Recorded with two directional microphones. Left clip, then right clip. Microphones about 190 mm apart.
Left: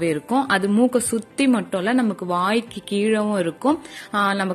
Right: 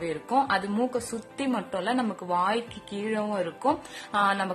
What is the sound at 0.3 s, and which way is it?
A woman's voice, 15° left (ahead or behind).